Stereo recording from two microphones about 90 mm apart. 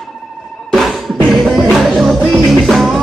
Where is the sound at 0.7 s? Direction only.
Centre (ahead or behind).